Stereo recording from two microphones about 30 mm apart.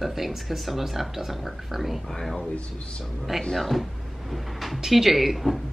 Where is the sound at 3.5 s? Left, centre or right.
Centre.